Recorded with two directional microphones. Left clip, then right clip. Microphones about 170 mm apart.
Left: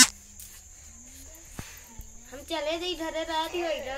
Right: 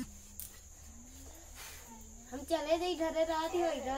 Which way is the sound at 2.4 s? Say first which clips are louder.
Left 2 dB; 30° right (ahead or behind).